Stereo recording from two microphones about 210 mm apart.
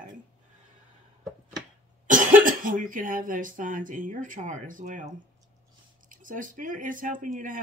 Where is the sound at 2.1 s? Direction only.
40° right (ahead or behind).